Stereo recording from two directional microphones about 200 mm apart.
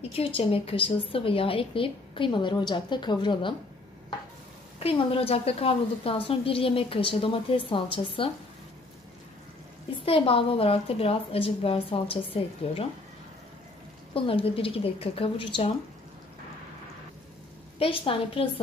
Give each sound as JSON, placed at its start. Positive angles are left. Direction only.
{"t": 0.1, "sound": "a woman's voice", "side_deg": 30}
{"t": 4.7, "sound": "a woman's voice", "side_deg": 30}
{"t": 10.0, "sound": "a woman's voice", "side_deg": 25}
{"t": 14.1, "sound": "a woman's voice", "side_deg": 25}
{"t": 17.7, "sound": "a woman's voice", "side_deg": 25}